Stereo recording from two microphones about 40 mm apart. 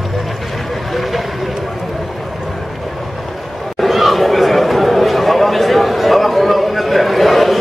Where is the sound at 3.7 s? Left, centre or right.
Centre.